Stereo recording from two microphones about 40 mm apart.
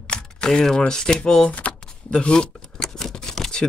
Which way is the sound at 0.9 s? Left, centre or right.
Centre.